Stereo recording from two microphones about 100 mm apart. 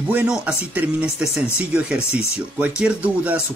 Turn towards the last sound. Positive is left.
turn(degrees=-15)  # may be behind; listen again after turning